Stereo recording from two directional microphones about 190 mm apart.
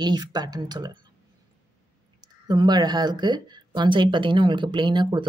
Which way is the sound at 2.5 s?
20° right (ahead or behind).